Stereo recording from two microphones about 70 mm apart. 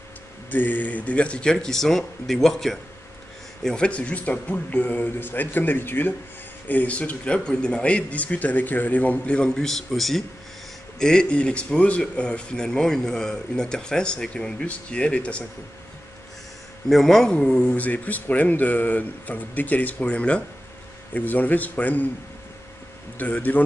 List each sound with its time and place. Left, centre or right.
0.5 s speech: left; by 2.8 s centre
3.6 s speech: centre
16.9 s speech: centre
17.6 s speech: left
23.1 s speech: left